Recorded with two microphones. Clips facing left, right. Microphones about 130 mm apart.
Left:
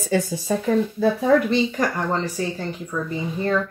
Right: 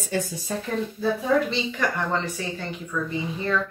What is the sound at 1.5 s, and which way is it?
Speech, 45° left (ahead or behind).